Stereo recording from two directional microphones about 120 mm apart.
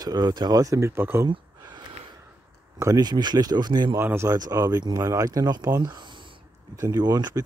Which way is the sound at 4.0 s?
20° right (ahead or behind).